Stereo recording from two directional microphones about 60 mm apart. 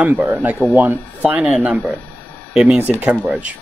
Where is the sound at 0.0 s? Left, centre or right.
Right.